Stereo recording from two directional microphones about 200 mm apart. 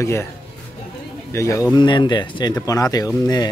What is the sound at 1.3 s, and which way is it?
A man's voice, 15° left (ahead or behind).